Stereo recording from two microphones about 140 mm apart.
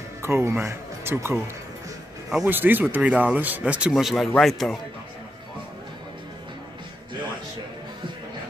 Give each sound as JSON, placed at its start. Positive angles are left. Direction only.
{"t": 0.2, "sound": "speech", "side_deg": -15}
{"t": 2.4, "sound": "speech", "side_deg": -15}